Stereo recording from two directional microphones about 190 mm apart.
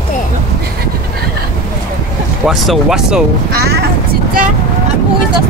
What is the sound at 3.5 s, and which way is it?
Speech, 55° right (ahead or behind).